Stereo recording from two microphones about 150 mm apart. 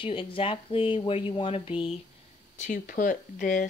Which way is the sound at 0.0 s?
35° left (ahead or behind).